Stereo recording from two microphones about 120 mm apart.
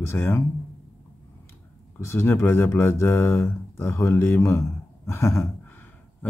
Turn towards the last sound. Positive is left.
turn(degrees=20)  # may be behind; listen again after turning